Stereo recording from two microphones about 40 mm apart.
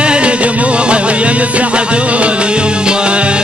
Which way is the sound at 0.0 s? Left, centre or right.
Right.